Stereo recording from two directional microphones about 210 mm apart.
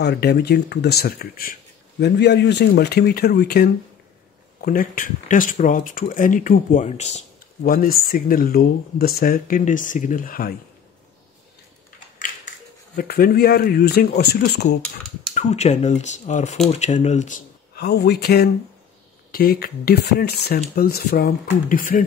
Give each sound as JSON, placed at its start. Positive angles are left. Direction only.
{"t": 0.0, "sound": "speech", "side_deg": 50}
{"t": 12.9, "sound": "speech", "side_deg": 45}
{"t": 15.3, "sound": "speech", "side_deg": 30}
{"t": 17.7, "sound": "speech", "side_deg": 50}